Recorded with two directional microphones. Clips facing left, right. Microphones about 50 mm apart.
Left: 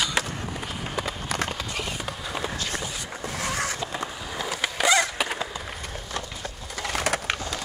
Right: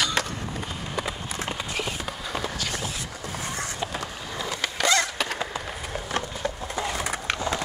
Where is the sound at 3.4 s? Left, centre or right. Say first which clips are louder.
Left 5 dB; left.